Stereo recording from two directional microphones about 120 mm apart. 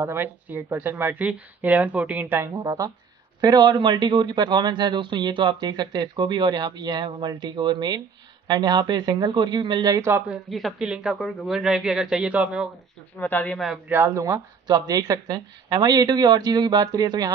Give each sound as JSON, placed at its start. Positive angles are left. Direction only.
{"t": 0.0, "sound": "a man's voice", "side_deg": -15}
{"t": 10.3, "sound": "a man's voice", "side_deg": 0}
{"t": 13.2, "sound": "speech", "side_deg": 15}
{"t": 13.8, "sound": "a man's voice", "side_deg": -20}